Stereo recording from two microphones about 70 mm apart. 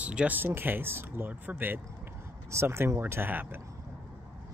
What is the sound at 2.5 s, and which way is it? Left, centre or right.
Speech, right.